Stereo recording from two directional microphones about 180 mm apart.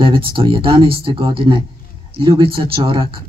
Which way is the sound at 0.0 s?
30° right (ahead or behind).